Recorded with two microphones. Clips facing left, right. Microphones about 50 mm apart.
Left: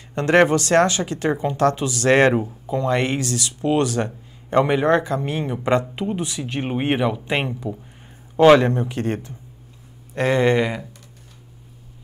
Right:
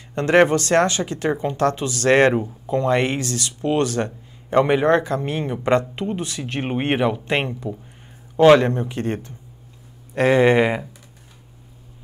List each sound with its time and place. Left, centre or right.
0.1 s speech: centre
3.3 s speech: centre
4.5 s speech: centre
10.1 s speech: centre